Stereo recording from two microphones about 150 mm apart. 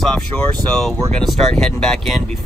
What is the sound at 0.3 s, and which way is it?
Speech, 5° left (ahead or behind).